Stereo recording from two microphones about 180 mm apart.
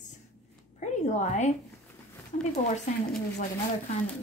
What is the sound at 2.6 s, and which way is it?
A woman's voice, 45° left (ahead or behind).